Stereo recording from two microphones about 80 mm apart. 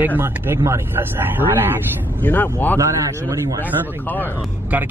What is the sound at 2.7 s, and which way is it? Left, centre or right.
Speech, right.